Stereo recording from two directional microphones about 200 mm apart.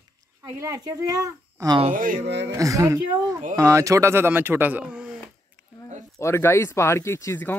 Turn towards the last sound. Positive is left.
turn(degrees=10)  # may be behind; listen again after turning